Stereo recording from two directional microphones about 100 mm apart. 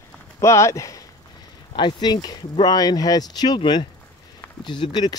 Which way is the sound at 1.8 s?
50° left (ahead or behind).